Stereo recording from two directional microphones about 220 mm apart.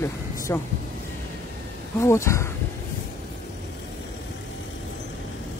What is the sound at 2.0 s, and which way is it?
Speech, 15° left (ahead or behind).